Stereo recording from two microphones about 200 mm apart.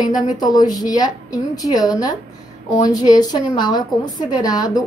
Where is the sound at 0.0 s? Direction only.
20° left (ahead or behind).